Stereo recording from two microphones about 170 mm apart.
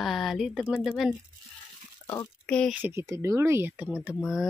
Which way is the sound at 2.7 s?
15° right (ahead or behind).